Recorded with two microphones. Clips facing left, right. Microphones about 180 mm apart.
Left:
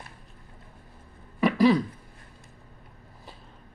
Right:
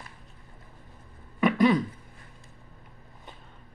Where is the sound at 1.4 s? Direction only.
Centre (ahead or behind).